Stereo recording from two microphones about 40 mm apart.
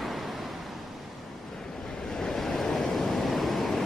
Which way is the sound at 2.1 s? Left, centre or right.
Centre.